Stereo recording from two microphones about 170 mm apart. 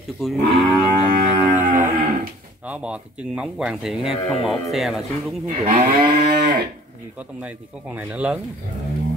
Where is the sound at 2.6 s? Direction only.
5° right (ahead or behind).